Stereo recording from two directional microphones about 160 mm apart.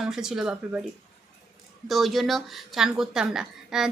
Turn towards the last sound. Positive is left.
turn(degrees=-5)  # may be behind; listen again after turning